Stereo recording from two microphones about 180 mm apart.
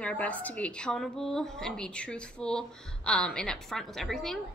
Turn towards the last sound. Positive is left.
turn(degrees=0)  # may be behind; listen again after turning